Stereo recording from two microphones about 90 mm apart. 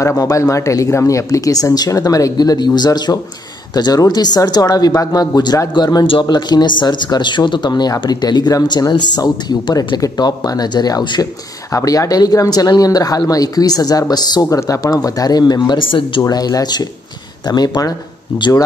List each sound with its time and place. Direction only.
0.0 s speech: 35° left (ahead or behind)
15.8 s speech: 75° left (ahead or behind)
16.2 s speech: 45° left (ahead or behind)
18.3 s speech: 60° left (ahead or behind)